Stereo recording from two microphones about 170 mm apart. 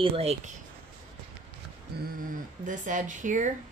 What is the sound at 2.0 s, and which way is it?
Speech, 55° right (ahead or behind).